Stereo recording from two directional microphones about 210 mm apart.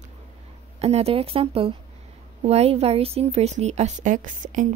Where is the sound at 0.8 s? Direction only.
30° right (ahead or behind).